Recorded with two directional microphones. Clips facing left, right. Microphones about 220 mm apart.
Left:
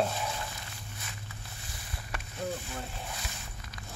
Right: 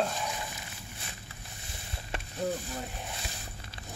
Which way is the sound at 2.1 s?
25° right (ahead or behind).